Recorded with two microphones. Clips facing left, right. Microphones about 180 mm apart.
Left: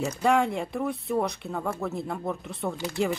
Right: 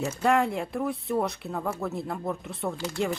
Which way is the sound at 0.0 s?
Centre (ahead or behind).